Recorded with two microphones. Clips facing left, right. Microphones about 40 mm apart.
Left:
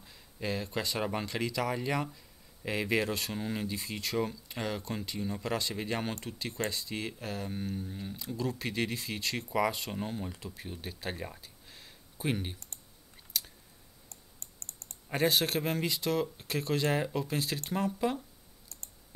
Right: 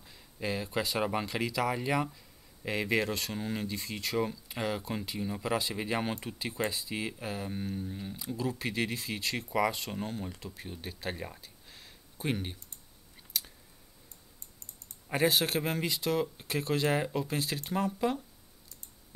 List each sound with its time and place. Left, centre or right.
0.0 s speech: centre
13.3 s a sound: centre
14.0 s typing: left
15.0 s speech: centre